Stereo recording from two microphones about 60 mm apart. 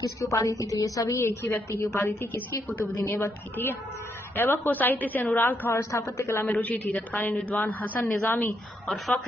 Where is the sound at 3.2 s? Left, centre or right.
Left.